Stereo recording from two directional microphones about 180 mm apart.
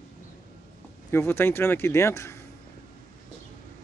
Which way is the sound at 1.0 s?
10° left (ahead or behind).